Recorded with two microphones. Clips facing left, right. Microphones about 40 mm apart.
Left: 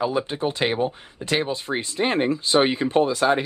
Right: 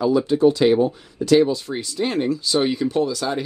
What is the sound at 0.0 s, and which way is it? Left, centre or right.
Speech, left.